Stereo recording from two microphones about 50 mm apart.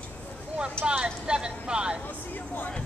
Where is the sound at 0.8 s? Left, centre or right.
Centre.